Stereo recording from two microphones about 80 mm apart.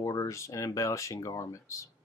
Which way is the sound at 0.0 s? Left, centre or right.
Left.